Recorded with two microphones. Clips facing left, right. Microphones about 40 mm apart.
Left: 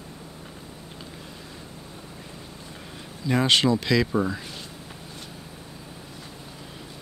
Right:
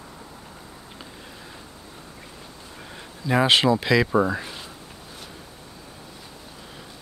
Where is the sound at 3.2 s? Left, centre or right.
Centre.